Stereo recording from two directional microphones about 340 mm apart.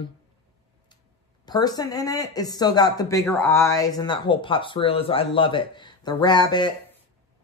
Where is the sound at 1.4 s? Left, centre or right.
Centre.